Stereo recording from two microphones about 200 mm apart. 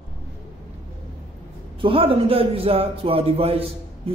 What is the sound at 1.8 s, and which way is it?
A man's voice, 25° right (ahead or behind).